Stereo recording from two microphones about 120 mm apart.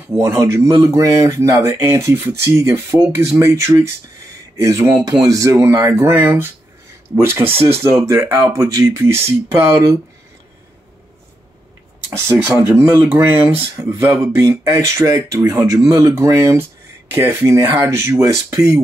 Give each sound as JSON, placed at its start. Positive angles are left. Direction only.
{"t": 0.2, "sound": "speech", "side_deg": -25}
{"t": 12.2, "sound": "speech", "side_deg": -20}